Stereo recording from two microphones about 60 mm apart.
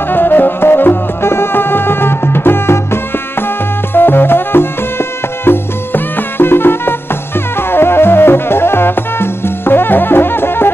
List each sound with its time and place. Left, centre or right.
0.1 s music: left